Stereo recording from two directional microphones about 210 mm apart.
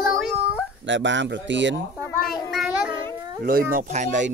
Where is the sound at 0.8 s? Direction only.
60° right (ahead or behind).